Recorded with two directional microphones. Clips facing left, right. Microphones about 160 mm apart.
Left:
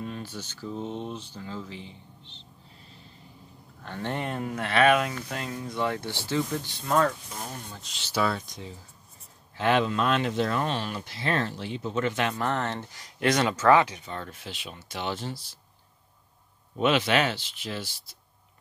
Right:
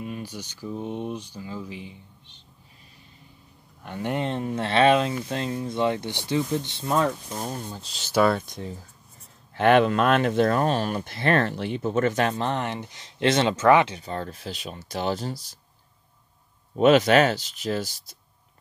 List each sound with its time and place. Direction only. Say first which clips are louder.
0.0 s speech: right 2 dB; 10° right (ahead or behind)
3.8 s speech: right 4 dB; 15° right (ahead or behind)
7.2 s speech: right 6 dB; 35° right (ahead or behind)
8.0 s speech: right 6 dB; 50° right (ahead or behind)
12.4 s speech: right 2 dB; 20° right (ahead or behind); by 15.5 s 40° right (ahead or behind)
16.7 s speech: right 7 dB; 40° right (ahead or behind)